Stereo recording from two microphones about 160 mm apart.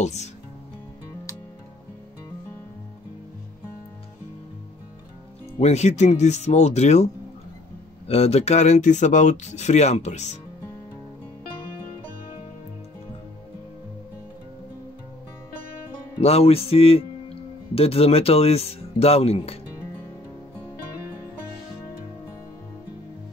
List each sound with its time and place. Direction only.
0.0 s speech: 45° left (ahead or behind)
5.6 s speech: 45° left (ahead or behind)
8.1 s speech: 40° left (ahead or behind)
16.2 s speech: 40° left (ahead or behind)